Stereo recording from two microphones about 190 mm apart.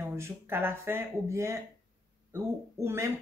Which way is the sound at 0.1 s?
15° right (ahead or behind).